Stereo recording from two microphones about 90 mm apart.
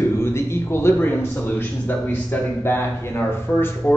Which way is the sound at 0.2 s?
30° left (ahead or behind).